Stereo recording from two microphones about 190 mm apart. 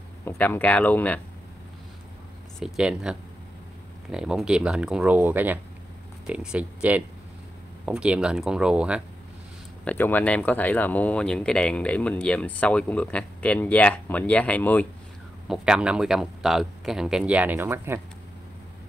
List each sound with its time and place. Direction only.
0.2 s speech: 10° left (ahead or behind)
2.6 s speech: 5° right (ahead or behind)
9.8 s speech: 10° left (ahead or behind)
15.4 s speech: 5° right (ahead or behind)